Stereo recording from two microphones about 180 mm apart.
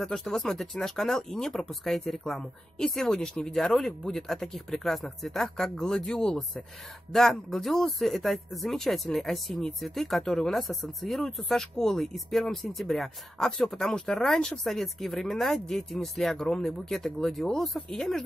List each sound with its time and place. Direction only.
0.0 s speech: centre (ahead or behind)